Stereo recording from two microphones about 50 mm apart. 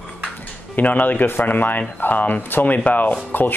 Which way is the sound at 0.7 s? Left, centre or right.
Left.